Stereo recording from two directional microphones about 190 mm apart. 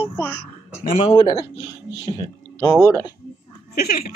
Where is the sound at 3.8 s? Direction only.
50° left (ahead or behind).